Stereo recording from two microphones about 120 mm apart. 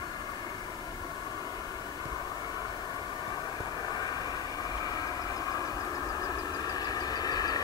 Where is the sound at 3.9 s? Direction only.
35° left (ahead or behind).